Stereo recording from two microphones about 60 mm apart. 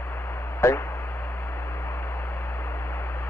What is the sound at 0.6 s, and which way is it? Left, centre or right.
Speech, left.